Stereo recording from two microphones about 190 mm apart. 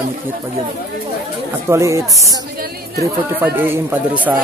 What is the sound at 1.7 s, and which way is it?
Speech, 15° right (ahead or behind).